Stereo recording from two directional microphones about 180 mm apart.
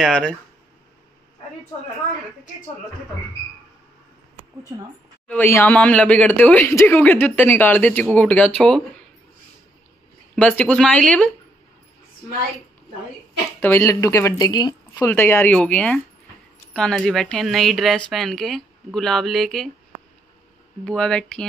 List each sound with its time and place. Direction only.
0.0 s a woman's voice: 5° left (ahead or behind)
5.3 s speech: 10° left (ahead or behind)
10.3 s speech: 5° left (ahead or behind)
13.6 s a woman's voice: 15° left (ahead or behind)
15.0 s a woman's voice: 10° left (ahead or behind)
20.8 s a woman's voice: 5° left (ahead or behind)